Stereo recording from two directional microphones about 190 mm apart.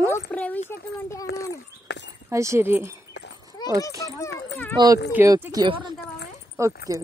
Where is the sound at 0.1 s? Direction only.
10° left (ahead or behind).